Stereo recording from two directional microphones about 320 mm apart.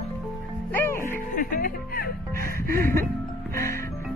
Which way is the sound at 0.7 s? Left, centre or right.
Centre.